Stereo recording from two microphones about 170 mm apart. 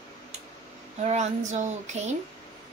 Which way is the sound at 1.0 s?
40° right (ahead or behind).